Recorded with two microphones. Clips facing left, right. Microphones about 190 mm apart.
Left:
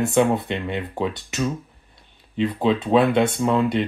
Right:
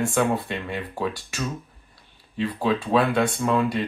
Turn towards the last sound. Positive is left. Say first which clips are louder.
# left 3 dB
turn(degrees=20)  # may be behind; listen again after turning